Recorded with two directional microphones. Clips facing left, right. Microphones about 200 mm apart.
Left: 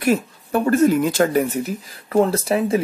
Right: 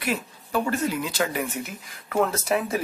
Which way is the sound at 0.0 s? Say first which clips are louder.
Left 9 dB; 50° left (ahead or behind).